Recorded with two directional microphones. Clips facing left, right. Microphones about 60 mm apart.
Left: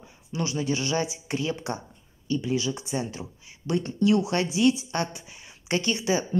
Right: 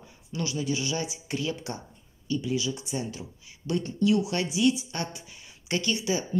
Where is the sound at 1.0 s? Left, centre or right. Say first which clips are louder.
Left 2 dB; left.